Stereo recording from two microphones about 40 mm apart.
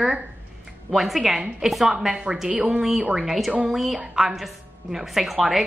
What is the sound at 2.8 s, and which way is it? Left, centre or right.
A woman's voice, centre.